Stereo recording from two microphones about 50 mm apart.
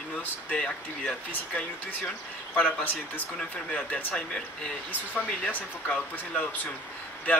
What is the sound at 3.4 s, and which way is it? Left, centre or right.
Speech, left.